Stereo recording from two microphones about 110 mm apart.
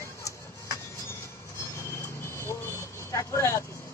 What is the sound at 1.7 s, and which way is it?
Vehicle, 25° left (ahead or behind).